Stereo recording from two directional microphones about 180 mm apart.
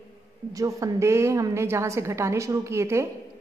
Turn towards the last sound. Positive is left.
turn(degrees=-15)  # may be behind; listen again after turning